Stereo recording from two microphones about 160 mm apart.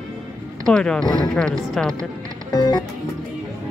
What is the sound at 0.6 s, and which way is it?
Speech, 5° left (ahead or behind).